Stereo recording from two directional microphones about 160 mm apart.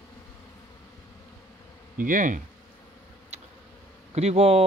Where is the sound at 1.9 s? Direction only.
55° right (ahead or behind).